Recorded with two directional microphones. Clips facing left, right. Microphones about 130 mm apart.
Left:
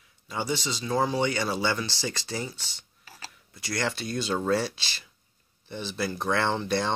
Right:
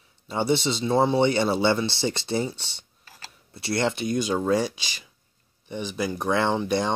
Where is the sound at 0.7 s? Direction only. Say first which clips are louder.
Right 5 dB; 25° right (ahead or behind).